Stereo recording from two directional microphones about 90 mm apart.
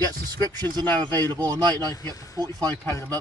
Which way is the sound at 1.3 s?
50° right (ahead or behind).